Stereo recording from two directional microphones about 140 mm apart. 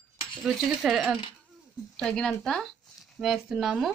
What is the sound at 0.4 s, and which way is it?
Speech, centre (ahead or behind).